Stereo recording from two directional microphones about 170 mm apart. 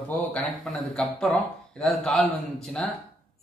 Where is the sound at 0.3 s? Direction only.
5° left (ahead or behind).